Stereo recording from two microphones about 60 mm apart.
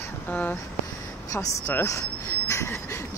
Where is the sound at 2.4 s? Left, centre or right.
Left.